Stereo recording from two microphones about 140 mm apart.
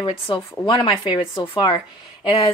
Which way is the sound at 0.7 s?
40° left (ahead or behind).